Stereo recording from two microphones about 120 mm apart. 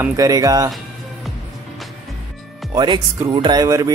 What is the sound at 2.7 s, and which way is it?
Speech, 35° right (ahead or behind).